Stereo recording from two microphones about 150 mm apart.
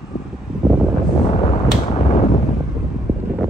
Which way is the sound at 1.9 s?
40° left (ahead or behind).